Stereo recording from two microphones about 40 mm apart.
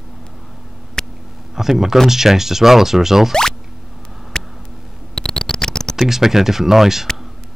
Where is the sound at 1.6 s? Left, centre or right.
Centre.